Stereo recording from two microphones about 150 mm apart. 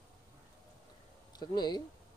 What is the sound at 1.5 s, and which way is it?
Speech, 30° left (ahead or behind).